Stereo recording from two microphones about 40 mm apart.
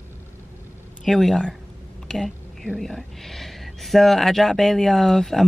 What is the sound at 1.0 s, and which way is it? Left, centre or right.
Speech, centre.